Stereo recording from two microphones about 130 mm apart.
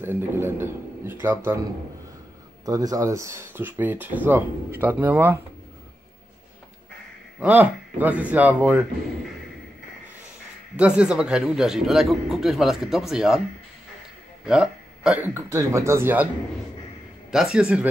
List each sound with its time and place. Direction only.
0.0 s speech: 15° right (ahead or behind)
2.6 s speech: 30° right (ahead or behind)
7.3 s speech: 10° right (ahead or behind)
10.8 s speech: 10° right (ahead or behind)
14.4 s speech: 5° right (ahead or behind)
17.3 s speech: 5° right (ahead or behind)